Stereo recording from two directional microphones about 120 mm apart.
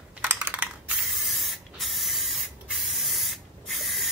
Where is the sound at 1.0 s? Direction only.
Centre (ahead or behind).